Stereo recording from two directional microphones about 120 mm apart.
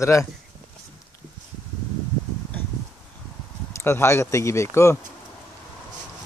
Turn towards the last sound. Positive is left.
turn(degrees=20)  # may be behind; listen again after turning